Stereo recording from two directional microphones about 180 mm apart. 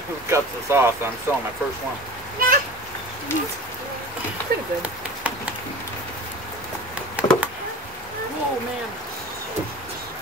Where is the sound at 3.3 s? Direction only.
15° left (ahead or behind).